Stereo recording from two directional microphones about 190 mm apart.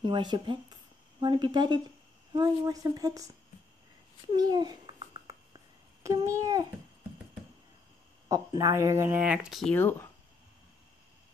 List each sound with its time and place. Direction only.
0.0 s a woman's voice: 25° right (ahead or behind)
4.4 s babbling: 20° right (ahead or behind)
8.3 s speech: 20° right (ahead or behind); by 9.8 s centre (ahead or behind)
9.8 s speech: 10° left (ahead or behind)